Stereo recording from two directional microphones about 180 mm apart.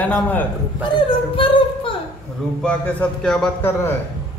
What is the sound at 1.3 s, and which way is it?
Speech, 30° left (ahead or behind).